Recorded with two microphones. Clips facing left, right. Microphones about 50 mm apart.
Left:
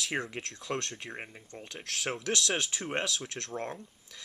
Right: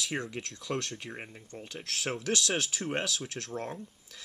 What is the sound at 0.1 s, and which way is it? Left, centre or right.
Speech, centre.